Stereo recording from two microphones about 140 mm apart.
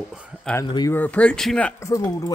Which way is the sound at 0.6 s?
30° left (ahead or behind).